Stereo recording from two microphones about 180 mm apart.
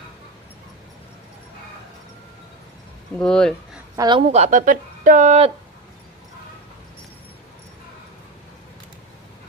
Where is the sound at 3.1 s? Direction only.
5° left (ahead or behind).